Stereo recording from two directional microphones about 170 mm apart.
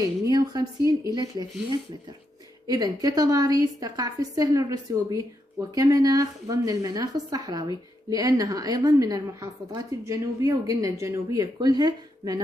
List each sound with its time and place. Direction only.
0.2 s a woman's voice: 20° right (ahead or behind)